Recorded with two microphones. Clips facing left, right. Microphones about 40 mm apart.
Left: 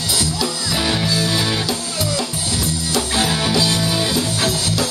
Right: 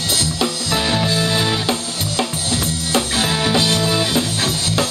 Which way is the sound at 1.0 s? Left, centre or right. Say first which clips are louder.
Right 1 dB; right.